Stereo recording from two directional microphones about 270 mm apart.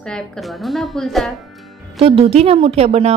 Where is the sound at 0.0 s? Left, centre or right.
Centre.